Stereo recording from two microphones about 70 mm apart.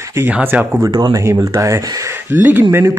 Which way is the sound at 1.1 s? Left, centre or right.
Right.